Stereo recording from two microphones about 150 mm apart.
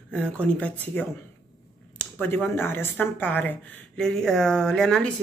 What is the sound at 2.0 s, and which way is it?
Speech, 15° left (ahead or behind).